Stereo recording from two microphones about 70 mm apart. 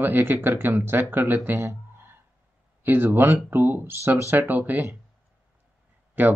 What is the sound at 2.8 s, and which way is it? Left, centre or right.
Speech, right.